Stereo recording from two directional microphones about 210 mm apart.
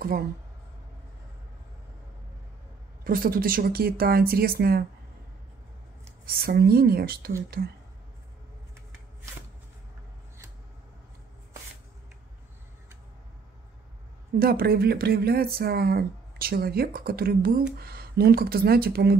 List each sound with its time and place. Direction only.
3.0 s speech: 45° right (ahead or behind)
6.2 s speech: 45° right (ahead or behind)
14.4 s speech: 45° right (ahead or behind)